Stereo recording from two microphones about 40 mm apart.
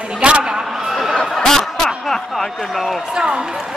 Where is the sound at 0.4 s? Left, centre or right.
Centre.